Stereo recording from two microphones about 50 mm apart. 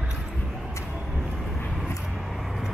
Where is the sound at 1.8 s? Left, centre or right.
Centre.